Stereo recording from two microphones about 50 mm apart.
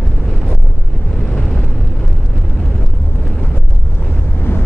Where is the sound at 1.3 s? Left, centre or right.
Centre.